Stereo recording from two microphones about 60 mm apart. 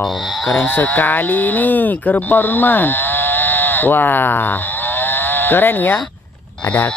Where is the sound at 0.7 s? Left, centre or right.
Left.